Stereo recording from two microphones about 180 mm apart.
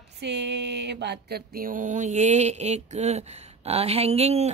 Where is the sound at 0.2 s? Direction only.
70° right (ahead or behind).